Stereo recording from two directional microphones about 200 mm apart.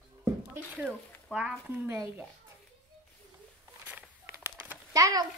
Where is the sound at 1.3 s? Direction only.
5° right (ahead or behind).